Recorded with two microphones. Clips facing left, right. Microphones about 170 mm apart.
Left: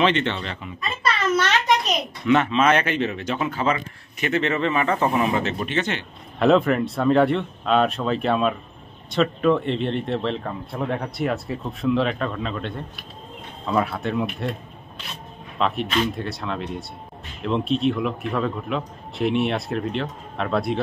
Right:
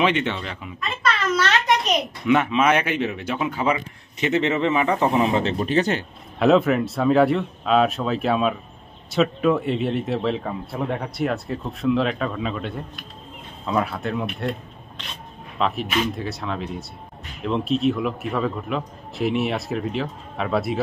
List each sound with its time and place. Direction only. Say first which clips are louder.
0.0 s a man's voice: even; 10° right (ahead or behind)
2.2 s speech: left 1 dB; 10° right (ahead or behind); by 6.0 s 35° right (ahead or behind)
6.4 s a man's voice: right 1 dB; centre (ahead or behind)